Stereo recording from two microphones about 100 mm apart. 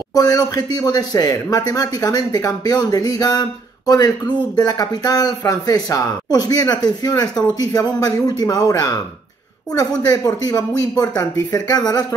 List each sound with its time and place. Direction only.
0.1 s speech: 40° left (ahead or behind)